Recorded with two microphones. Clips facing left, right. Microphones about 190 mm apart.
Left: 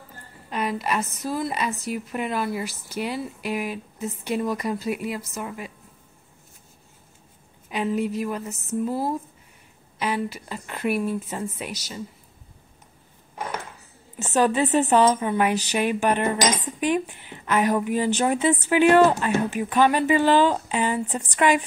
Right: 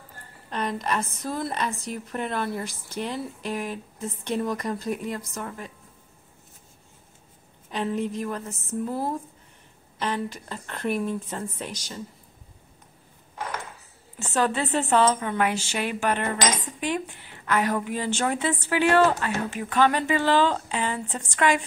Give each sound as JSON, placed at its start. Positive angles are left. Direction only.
{"t": 0.5, "sound": "a woman's voice", "side_deg": 10}
{"t": 7.7, "sound": "a woman's voice", "side_deg": 10}
{"t": 14.1, "sound": "a woman's voice", "side_deg": 15}